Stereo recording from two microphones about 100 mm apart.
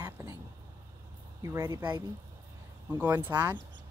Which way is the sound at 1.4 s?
30° right (ahead or behind).